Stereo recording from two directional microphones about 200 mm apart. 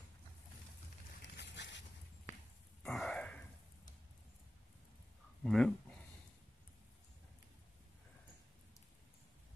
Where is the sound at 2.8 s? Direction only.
Centre (ahead or behind).